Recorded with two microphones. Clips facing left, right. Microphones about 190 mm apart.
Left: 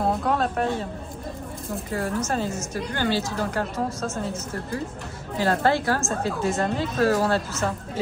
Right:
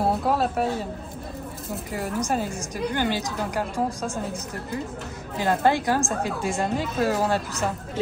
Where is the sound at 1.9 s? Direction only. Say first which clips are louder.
Even; 15° right (ahead or behind).